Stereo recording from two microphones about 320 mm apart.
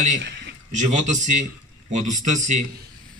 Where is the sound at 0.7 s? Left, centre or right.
Right.